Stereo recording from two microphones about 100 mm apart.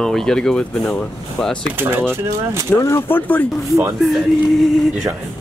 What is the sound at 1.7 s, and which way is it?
Speech, 20° right (ahead or behind).